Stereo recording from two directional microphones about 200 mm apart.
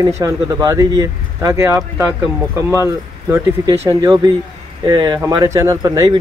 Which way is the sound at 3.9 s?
15° right (ahead or behind).